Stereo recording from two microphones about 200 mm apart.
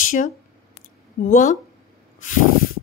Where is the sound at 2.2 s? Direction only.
40° left (ahead or behind).